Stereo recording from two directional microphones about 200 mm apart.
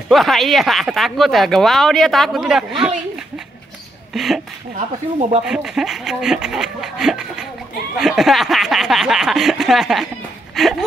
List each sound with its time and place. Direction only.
0.1 s speech: centre (ahead or behind)
4.1 s speech: centre (ahead or behind)
4.7 s speech: 30° right (ahead or behind)
5.4 s speech: 5° right (ahead or behind)
10.5 s a sound: centre (ahead or behind)